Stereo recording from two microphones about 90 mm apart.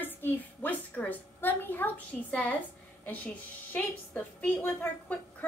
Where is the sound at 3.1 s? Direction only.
20° left (ahead or behind).